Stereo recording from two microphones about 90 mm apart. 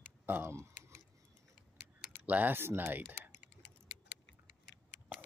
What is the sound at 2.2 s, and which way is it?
Speech, 20° right (ahead or behind).